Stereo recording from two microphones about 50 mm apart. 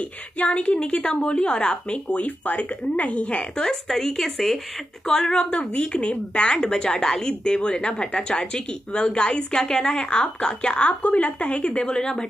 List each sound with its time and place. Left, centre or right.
0.5 s a woman's voice: left
3.5 s a woman's voice: centre
10.9 s a woman's voice: left; by 12.3 s centre